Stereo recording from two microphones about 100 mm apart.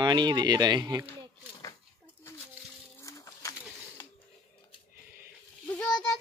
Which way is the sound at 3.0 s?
30° left (ahead or behind).